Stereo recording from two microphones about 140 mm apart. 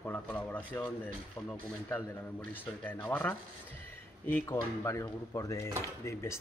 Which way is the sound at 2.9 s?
15° left (ahead or behind).